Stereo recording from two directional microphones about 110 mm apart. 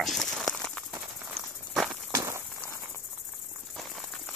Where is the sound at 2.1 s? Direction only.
25° right (ahead or behind).